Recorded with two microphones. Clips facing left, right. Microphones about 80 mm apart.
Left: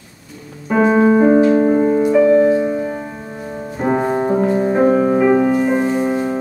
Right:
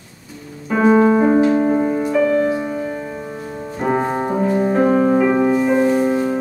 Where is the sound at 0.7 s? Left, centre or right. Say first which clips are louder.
Left 1 dB; centre.